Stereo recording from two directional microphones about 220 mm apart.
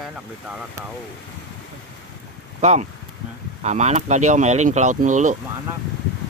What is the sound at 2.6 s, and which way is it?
Speech, 30° right (ahead or behind).